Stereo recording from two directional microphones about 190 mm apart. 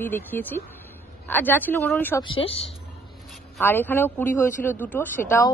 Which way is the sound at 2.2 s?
30° left (ahead or behind).